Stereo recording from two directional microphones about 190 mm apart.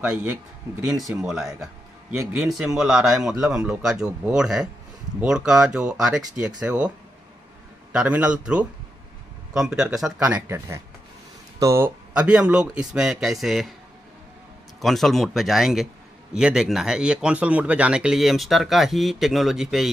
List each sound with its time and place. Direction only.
0.0 s a man's voice: 5° right (ahead or behind)
1.2 s speech: centre (ahead or behind)
1.6 s a sound: 15° right (ahead or behind)
2.4 s a man's voice: centre (ahead or behind)
7.9 s a man's voice: 5° right (ahead or behind)
14.8 s speech: centre (ahead or behind)